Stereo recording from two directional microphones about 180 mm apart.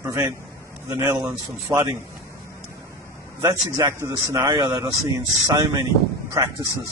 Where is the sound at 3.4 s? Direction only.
20° right (ahead or behind).